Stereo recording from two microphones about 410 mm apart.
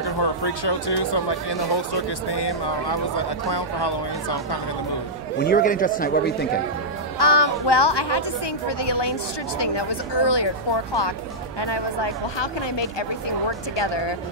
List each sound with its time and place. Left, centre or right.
0.2 s speech: left
5.4 s speech: centre
7.2 s speech: left
11.6 s speech: left